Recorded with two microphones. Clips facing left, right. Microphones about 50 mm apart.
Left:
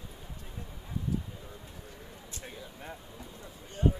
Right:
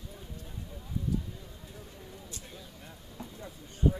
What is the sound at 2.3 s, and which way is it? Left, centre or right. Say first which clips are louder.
Vehicle: left 2 dB; left.